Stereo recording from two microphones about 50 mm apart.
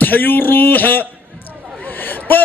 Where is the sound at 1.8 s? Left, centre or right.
Left.